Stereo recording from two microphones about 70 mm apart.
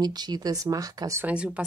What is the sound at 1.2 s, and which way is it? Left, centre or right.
Speech, centre.